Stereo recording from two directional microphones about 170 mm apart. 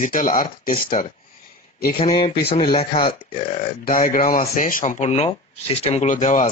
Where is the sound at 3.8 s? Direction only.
55° left (ahead or behind).